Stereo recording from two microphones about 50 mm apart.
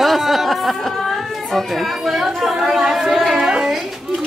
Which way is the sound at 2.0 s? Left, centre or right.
Centre.